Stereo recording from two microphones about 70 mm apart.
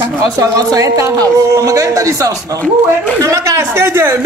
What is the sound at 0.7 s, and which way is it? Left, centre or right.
A man's voice, right.